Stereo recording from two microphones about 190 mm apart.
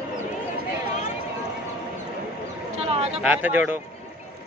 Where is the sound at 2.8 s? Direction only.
30° right (ahead or behind).